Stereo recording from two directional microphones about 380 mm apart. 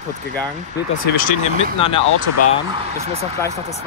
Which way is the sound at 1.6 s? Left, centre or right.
Centre.